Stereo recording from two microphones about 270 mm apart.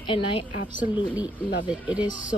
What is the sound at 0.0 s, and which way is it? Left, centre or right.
Speech, centre.